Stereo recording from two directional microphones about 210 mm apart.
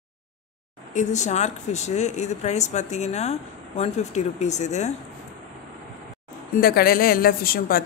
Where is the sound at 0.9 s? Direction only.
35° left (ahead or behind).